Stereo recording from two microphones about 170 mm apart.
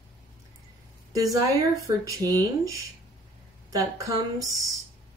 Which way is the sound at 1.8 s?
20° right (ahead or behind).